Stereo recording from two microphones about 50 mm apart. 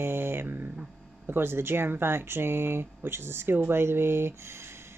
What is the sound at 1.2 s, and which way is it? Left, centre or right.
Speech, right.